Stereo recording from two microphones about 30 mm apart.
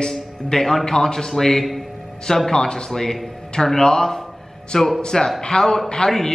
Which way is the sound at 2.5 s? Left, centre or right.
Left.